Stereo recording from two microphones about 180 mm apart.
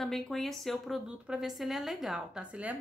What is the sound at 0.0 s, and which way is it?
A woman's voice, centre (ahead or behind).